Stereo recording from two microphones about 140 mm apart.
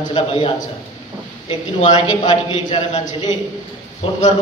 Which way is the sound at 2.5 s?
35° left (ahead or behind).